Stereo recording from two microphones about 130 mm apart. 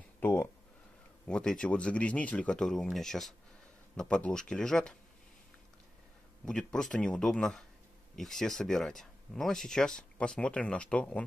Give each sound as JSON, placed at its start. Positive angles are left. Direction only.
{"t": 0.2, "sound": "speech", "side_deg": 20}
{"t": 1.2, "sound": "a man's voice", "side_deg": 5}
{"t": 6.4, "sound": "speech", "side_deg": 5}